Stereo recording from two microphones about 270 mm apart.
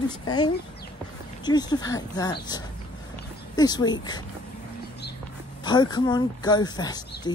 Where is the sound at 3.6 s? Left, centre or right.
Centre.